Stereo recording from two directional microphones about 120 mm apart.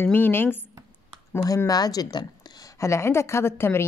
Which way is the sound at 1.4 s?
30° left (ahead or behind).